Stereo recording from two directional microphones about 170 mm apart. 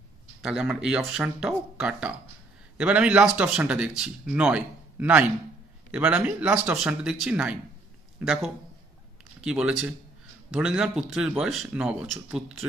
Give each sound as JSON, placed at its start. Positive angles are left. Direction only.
{"t": 0.4, "sound": "a man's voice", "side_deg": -5}